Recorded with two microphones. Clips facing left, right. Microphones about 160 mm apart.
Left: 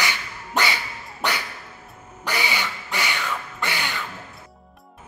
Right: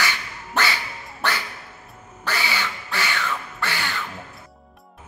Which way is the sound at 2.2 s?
15° left (ahead or behind).